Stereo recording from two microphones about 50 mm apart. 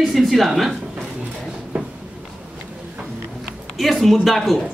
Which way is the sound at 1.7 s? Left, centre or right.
Right.